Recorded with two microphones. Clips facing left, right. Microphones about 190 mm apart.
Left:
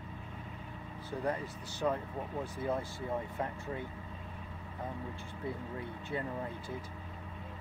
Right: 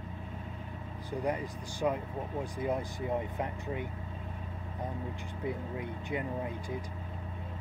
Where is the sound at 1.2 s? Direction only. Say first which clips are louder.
Right 2 dB; 15° right (ahead or behind).